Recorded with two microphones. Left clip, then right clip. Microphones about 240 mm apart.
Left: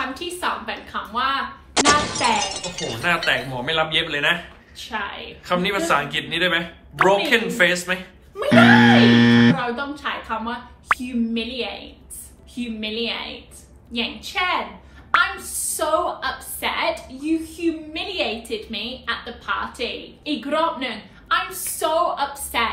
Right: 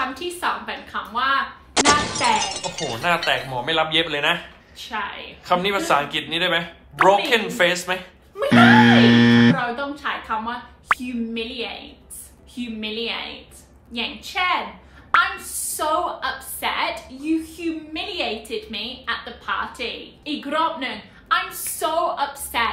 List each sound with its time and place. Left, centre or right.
0.0 s speech: centre
3.5 s a man's voice: right
4.7 s speech: centre
5.4 s a man's voice: right
8.4 s a woman's voice: centre